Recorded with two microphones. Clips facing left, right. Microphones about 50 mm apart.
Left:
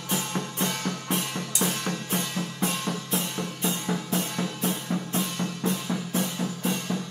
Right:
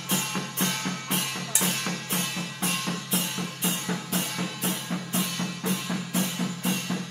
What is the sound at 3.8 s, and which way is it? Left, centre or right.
Music, centre.